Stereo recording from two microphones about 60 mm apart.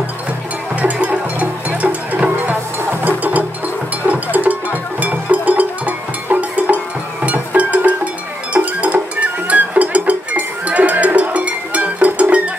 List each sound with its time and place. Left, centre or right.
0.7 s music: right